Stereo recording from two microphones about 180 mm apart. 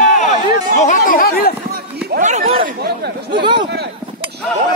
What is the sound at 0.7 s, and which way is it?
Speech, 45° left (ahead or behind).